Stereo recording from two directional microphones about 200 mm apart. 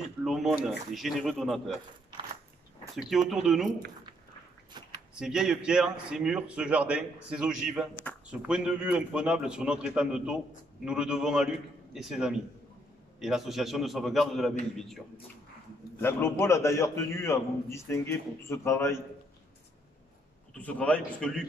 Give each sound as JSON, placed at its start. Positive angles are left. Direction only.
{"t": 0.2, "sound": "a man's voice", "side_deg": 0}
{"t": 3.0, "sound": "a man's voice", "side_deg": 0}
{"t": 4.7, "sound": "a sound", "side_deg": -20}
{"t": 5.1, "sound": "a man's voice", "side_deg": -5}
{"t": 16.0, "sound": "a man's voice", "side_deg": 10}
{"t": 20.5, "sound": "a man's voice", "side_deg": 5}